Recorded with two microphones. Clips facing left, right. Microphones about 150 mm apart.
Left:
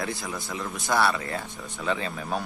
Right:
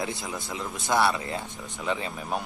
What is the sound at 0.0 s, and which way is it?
A man's voice, 20° right (ahead or behind).